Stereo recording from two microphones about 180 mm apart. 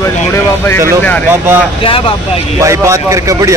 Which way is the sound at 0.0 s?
15° left (ahead or behind).